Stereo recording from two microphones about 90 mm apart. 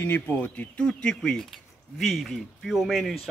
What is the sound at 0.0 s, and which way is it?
Speech, 20° left (ahead or behind).